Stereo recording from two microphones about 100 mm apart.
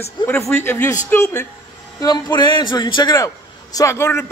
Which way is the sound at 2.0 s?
45° left (ahead or behind).